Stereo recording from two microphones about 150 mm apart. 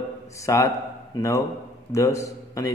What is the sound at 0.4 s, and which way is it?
A man's voice, 20° left (ahead or behind).